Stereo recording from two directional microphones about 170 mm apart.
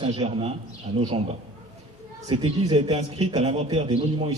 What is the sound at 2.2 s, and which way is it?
A man's voice, 30° right (ahead or behind).